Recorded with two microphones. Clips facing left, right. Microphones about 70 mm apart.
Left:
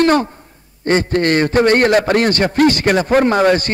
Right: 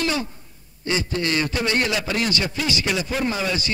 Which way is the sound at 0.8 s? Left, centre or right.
Left.